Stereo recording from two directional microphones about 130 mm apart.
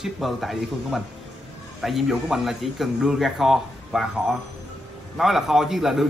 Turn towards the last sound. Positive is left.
turn(degrees=0)  # may be behind; listen again after turning